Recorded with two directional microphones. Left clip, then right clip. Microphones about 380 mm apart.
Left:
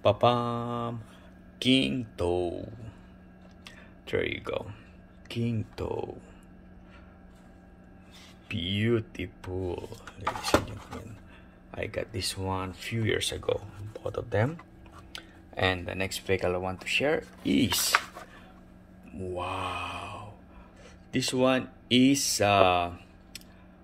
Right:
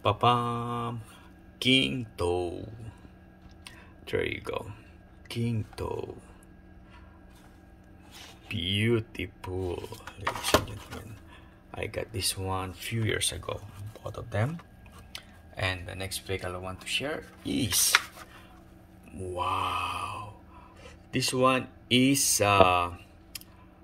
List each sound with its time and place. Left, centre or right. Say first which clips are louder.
0.0 s speech: left 1 dB; centre
3.6 s a sound: even; centre
5.3 s speech: left 1 dB; centre
8.5 s speech: right 1 dB; centre
11.7 s speech: left 1 dB; centre
15.1 s a sound: left 5 dB; centre
15.9 s speech: left 5 dB; centre
19.1 s speech: right 3 dB; centre
22.1 s speech: right 1 dB; left
22.4 s speech: right 1 dB; centre